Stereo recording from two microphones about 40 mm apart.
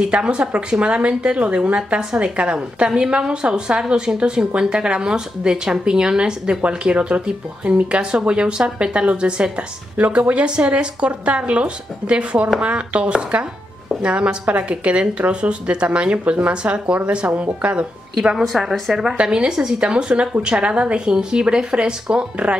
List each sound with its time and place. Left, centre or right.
0.1 s speech: right
18.4 s a woman's voice: centre
19.2 s speech: centre